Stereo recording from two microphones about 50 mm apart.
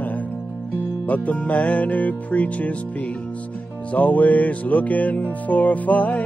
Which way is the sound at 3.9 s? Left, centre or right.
Left.